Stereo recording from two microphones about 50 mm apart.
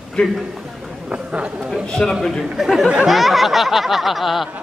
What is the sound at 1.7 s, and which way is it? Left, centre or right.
Speech, centre.